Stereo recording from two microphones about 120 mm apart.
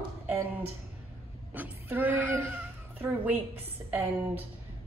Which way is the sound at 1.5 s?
15° right (ahead or behind).